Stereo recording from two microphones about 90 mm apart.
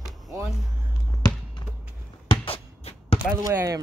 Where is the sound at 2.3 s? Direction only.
90° left.